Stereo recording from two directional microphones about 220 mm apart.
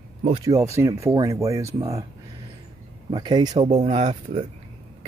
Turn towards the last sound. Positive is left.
turn(degrees=-30)  # may be behind; listen again after turning